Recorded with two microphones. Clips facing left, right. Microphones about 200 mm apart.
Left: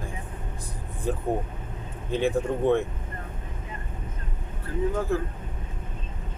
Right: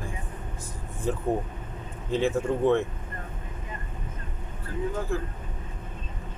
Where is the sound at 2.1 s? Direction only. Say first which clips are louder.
Even; 15° left (ahead or behind).